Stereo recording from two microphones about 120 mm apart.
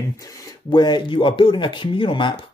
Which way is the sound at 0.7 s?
40° left (ahead or behind).